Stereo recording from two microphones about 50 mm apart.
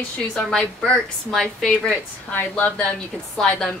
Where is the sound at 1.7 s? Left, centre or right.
Left.